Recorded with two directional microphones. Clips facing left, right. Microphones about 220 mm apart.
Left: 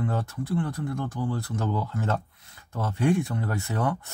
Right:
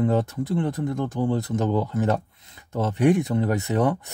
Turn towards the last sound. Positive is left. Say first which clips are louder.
# right 7 dB
turn(degrees=-20)  # may be behind; listen again after turning